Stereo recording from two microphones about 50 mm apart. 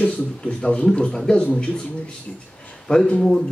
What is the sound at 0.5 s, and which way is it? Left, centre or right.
Speech, centre.